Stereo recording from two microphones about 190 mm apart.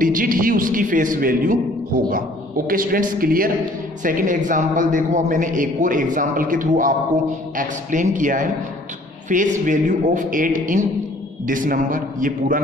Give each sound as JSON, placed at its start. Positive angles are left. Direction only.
{"t": 0.0, "sound": "a man's voice", "side_deg": -45}